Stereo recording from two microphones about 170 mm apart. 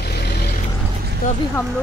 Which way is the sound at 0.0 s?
70° left (ahead or behind).